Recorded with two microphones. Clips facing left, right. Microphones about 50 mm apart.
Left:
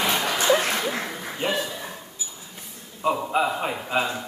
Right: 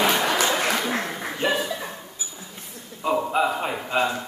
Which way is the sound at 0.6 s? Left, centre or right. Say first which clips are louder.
Right 2 dB; right.